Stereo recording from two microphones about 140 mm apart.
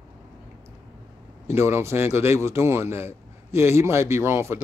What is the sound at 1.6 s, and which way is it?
A man's voice, 20° right (ahead or behind).